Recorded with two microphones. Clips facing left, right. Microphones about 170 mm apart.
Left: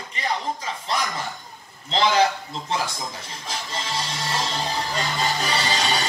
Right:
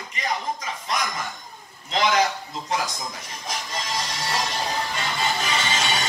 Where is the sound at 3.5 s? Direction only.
30° left (ahead or behind).